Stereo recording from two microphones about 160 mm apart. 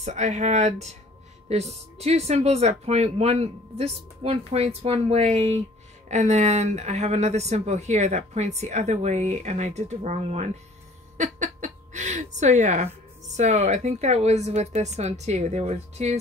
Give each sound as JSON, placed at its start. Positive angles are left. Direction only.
{"t": 0.0, "sound": "speech", "side_deg": -45}